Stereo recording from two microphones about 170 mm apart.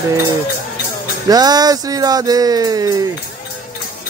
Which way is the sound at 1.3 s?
25° right (ahead or behind).